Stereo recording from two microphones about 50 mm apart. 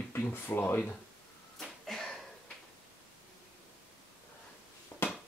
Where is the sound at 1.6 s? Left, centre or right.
Centre.